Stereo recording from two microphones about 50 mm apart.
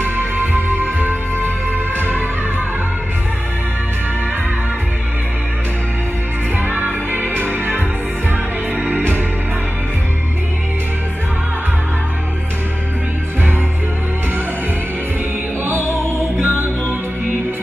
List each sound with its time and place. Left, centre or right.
0.0 s music: right
6.6 s music: right
15.8 s music: left
16.3 s music: right